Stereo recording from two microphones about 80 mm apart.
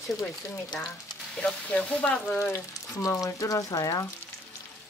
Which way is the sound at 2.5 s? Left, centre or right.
Left.